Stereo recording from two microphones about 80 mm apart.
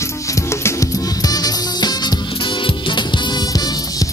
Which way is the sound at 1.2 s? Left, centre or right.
Left.